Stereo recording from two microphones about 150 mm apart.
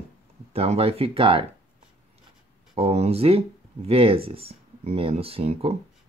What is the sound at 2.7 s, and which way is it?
Speech, 45° right (ahead or behind).